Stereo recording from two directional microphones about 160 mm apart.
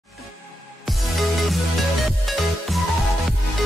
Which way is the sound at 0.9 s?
Centre (ahead or behind).